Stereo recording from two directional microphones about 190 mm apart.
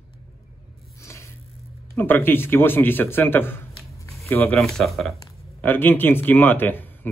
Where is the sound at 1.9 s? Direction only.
10° left (ahead or behind).